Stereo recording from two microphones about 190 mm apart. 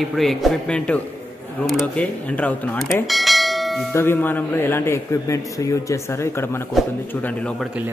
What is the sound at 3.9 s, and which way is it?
A man's voice, 10° left (ahead or behind).